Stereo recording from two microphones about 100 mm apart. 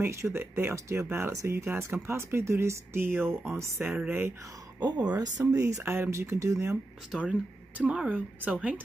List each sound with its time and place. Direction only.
0.0 s speech: 25° right (ahead or behind)
4.8 s speech: 40° right (ahead or behind)
7.1 s speech: 15° right (ahead or behind)